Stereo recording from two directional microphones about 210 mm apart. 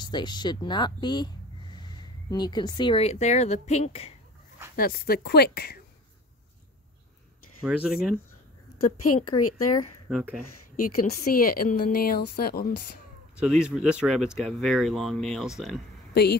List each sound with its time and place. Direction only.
0.0 s speech: 20° left (ahead or behind)
4.7 s a woman's voice: 45° left (ahead or behind)
7.6 s speech: 5° right (ahead or behind)
8.9 s speech: 90° left
10.0 s speech: 5° right (ahead or behind)
11.3 s a woman's voice: 45° left (ahead or behind)
13.4 s speech: 5° right (ahead or behind)
16.1 s speech: 50° left (ahead or behind)